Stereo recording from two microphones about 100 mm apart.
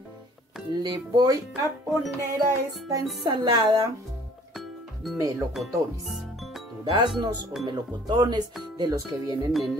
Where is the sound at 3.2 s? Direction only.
50° right (ahead or behind).